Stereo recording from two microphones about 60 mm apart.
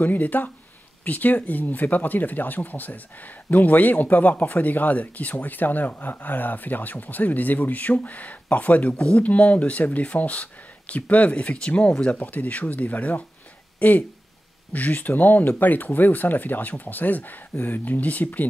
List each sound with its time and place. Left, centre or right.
0.0 s speech: left